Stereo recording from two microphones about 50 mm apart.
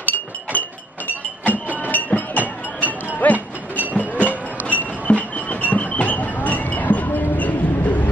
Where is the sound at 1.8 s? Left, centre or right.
Left.